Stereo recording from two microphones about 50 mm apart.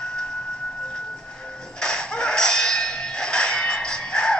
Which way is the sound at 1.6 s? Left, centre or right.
Centre.